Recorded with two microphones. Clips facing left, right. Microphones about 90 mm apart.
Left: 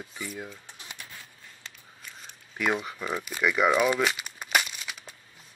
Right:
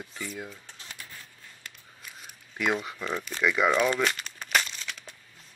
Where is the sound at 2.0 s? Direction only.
5° right (ahead or behind).